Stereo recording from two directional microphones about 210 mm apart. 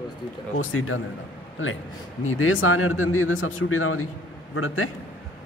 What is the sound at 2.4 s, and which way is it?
A man's voice, 70° left (ahead or behind).